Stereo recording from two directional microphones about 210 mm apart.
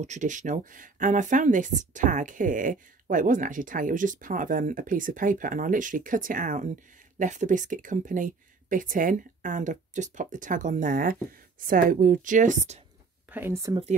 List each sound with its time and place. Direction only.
0.0 s speech: 35° right (ahead or behind)
13.3 s speech: 10° right (ahead or behind)